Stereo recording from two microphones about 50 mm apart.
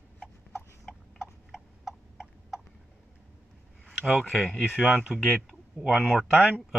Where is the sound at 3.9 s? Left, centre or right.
Centre.